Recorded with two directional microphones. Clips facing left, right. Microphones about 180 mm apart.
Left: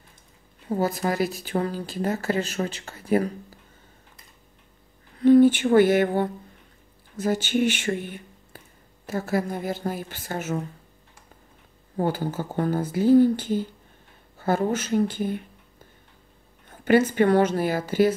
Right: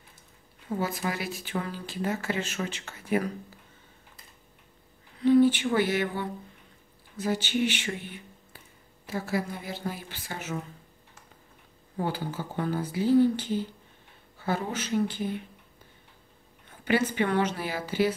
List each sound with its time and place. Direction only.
0.7 s speech: 40° left (ahead or behind)
5.2 s a sound: 50° left (ahead or behind)
7.2 s speech: 45° left (ahead or behind)
12.0 s speech: 45° left (ahead or behind)
16.8 s speech: 45° left (ahead or behind)